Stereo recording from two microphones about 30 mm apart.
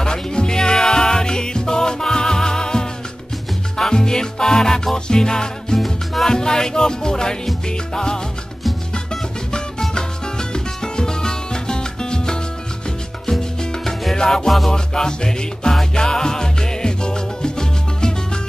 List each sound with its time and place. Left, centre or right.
0.0 s music: left
5.8 s music: centre
6.2 s speech: left
9.5 s music: left
14.7 s speech: left
15.7 s music: centre
16.0 s music: left